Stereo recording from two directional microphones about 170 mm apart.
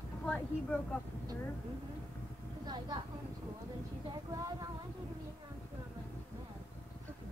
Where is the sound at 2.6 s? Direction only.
25° right (ahead or behind).